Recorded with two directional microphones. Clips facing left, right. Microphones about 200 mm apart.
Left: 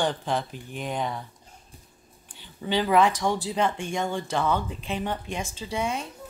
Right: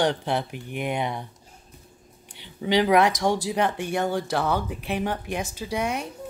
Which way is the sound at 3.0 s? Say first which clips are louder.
Right 1 dB; 70° right (ahead or behind).